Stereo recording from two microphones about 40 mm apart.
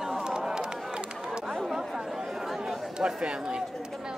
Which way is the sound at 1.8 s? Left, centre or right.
Centre.